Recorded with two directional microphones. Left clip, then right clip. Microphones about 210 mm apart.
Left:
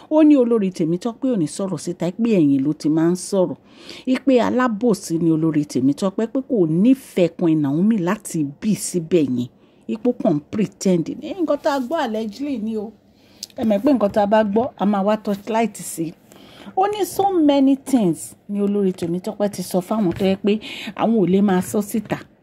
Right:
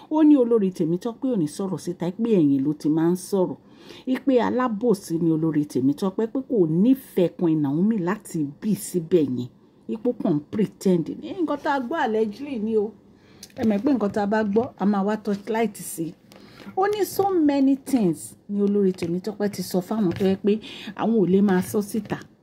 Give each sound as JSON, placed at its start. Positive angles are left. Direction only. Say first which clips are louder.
{"t": 0.1, "sound": "speech", "louder": "left 3 dB", "side_deg": 25}
{"t": 13.6, "sound": "speech", "louder": "left 6 dB", "side_deg": 25}